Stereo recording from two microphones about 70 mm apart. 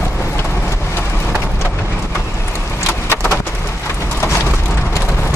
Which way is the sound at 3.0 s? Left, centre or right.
Left.